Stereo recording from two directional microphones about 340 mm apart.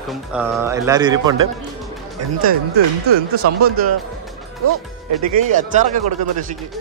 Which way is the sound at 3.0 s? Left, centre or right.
Right.